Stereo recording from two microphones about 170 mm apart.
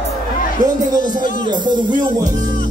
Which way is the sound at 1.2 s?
50° left (ahead or behind).